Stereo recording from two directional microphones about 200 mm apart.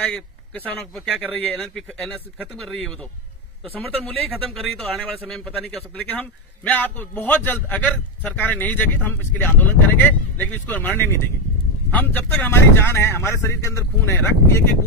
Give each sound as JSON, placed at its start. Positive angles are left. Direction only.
{"t": 0.0, "sound": "a man's voice", "side_deg": 5}